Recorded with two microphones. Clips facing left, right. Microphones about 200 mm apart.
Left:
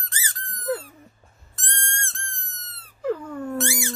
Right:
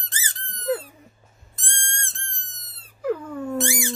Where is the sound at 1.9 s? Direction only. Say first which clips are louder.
Left 3 dB; 15° right (ahead or behind).